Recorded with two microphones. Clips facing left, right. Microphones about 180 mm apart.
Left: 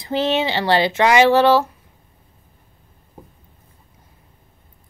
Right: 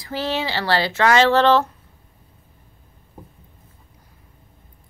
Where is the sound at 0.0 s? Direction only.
20° left (ahead or behind).